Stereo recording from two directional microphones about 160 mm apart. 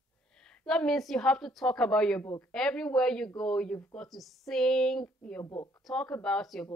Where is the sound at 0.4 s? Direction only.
5° left (ahead or behind).